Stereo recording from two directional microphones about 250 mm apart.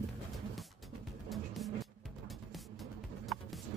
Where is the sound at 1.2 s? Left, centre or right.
Centre.